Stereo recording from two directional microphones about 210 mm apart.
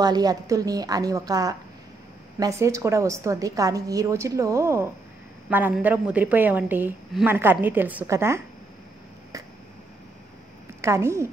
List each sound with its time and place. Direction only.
0.0 s a woman's voice: 20° right (ahead or behind)
10.8 s a woman's voice: 15° right (ahead or behind)